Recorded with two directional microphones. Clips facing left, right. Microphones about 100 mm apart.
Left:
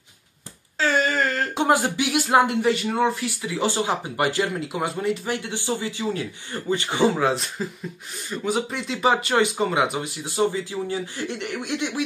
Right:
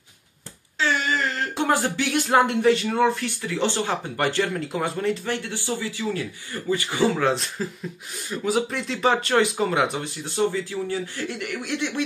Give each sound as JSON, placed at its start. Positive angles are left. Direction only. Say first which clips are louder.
{"t": 0.7, "sound": "a sound", "louder": "left 2 dB", "side_deg": 40}
{"t": 1.5, "sound": "speech", "louder": "left 1 dB", "side_deg": 15}
{"t": 7.2, "sound": "speech", "louder": "even", "side_deg": 5}
{"t": 10.2, "sound": "speech", "louder": "left 1 dB", "side_deg": 15}